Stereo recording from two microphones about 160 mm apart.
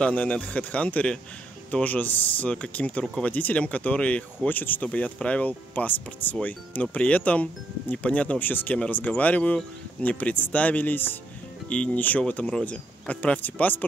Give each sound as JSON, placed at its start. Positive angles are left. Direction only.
{"t": 0.0, "sound": "speech", "side_deg": 10}